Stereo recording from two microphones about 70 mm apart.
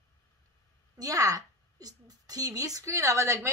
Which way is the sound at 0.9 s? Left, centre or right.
Right.